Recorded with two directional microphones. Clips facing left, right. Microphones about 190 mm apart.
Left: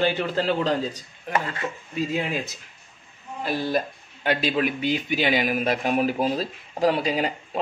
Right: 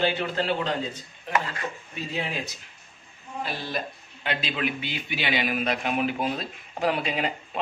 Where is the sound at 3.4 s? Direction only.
50° left (ahead or behind).